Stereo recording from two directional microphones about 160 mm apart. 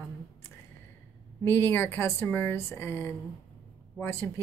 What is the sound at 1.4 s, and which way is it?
Speech, 15° left (ahead or behind).